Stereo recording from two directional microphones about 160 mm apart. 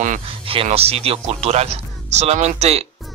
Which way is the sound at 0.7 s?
40° right (ahead or behind).